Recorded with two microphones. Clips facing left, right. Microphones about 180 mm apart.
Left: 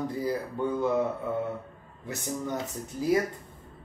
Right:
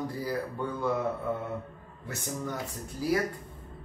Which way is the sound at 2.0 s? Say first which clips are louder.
Left 3 dB; 20° left (ahead or behind).